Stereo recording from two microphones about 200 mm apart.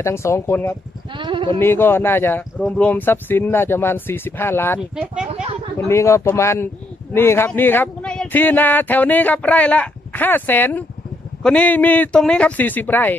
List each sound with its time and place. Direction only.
0.0 s speech: 15° left (ahead or behind)
1.1 s bleat: 25° right (ahead or behind)
1.6 s speech: 10° left (ahead or behind)
4.7 s speech: 5° right (ahead or behind)
5.3 s a sound: 30° right (ahead or behind)
5.9 s speech: 15° left (ahead or behind)